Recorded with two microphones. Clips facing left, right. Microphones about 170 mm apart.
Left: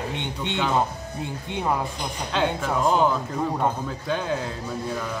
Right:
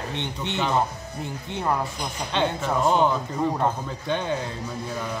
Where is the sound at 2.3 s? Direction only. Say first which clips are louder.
Even; 5° left (ahead or behind).